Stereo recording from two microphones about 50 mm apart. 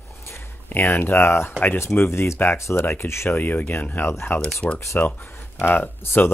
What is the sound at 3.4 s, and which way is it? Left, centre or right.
Speech, left.